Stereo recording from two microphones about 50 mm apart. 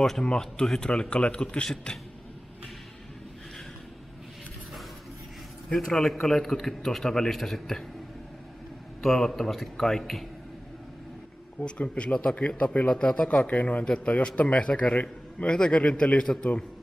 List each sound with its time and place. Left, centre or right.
0.2 s a man's voice: centre
5.7 s a man's voice: centre
9.0 s a man's voice: centre
11.6 s a man's voice: left
13.5 s a man's voice: left
14.7 s a man's voice: centre
15.0 s a man's voice: left